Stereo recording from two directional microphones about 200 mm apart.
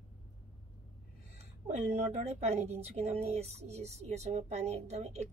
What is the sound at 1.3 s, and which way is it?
Speech, 35° right (ahead or behind).